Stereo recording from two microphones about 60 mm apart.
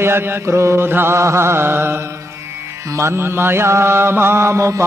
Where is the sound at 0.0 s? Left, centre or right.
Right.